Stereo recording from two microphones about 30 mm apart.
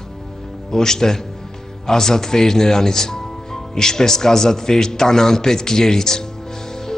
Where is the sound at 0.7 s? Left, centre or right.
Centre.